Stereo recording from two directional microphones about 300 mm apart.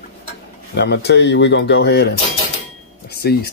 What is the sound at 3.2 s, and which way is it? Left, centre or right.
Speech, left.